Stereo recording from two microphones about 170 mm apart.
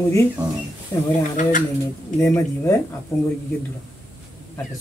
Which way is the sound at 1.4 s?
50° left (ahead or behind).